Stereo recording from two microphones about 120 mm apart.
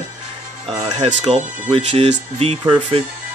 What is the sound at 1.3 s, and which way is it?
Speech, 60° right (ahead or behind).